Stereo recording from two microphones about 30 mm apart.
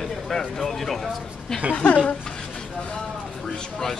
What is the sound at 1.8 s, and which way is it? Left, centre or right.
Speech, left.